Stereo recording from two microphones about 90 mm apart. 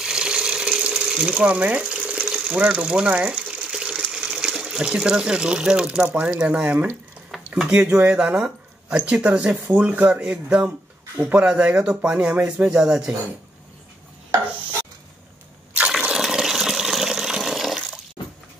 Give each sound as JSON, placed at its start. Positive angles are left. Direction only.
{"t": 0.0, "sound": "ratchet", "side_deg": -10}
{"t": 7.2, "sound": "a sound", "side_deg": -5}
{"t": 7.8, "sound": "speech", "side_deg": -15}
{"t": 11.1, "sound": "speech", "side_deg": -20}
{"t": 15.9, "sound": "toilet flush", "side_deg": -5}